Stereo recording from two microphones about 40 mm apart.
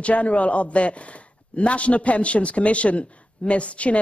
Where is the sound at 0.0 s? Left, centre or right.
Left.